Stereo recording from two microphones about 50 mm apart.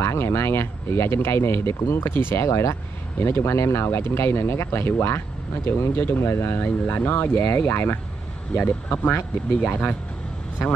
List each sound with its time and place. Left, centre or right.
0.0 s speech: left
2.0 s speech: left
2.4 s speech: left
3.2 s speech: left
3.4 s speech: left
4.4 s speech: left
7.0 s speech: left
7.4 s speech: left
8.5 s speech: left